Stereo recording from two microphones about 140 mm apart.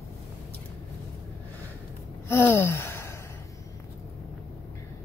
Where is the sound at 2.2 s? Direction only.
15° left (ahead or behind).